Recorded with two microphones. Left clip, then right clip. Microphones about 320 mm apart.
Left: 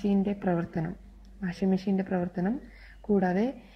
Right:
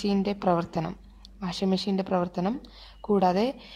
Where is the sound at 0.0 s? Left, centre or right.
Right.